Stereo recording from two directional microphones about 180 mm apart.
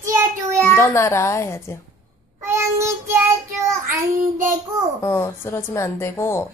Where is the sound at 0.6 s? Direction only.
15° left (ahead or behind).